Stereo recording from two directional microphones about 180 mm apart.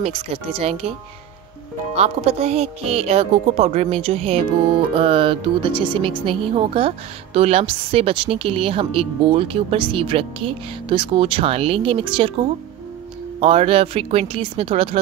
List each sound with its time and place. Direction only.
0.0 s a woman's voice: 35° right (ahead or behind)
2.0 s a woman's voice: 35° right (ahead or behind)
13.4 s a woman's voice: 30° right (ahead or behind)